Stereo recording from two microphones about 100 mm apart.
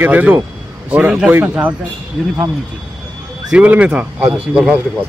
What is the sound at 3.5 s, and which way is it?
Speech, 15° right (ahead or behind).